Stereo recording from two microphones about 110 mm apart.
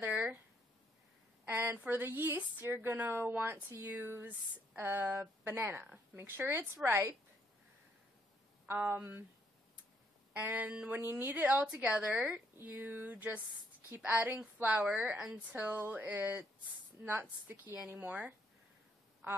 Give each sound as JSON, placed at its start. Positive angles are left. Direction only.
{"t": 0.0, "sound": "a sound", "side_deg": -15}
{"t": 1.5, "sound": "speech", "side_deg": -20}
{"t": 8.6, "sound": "speech", "side_deg": -20}
{"t": 10.3, "sound": "a woman's voice", "side_deg": -15}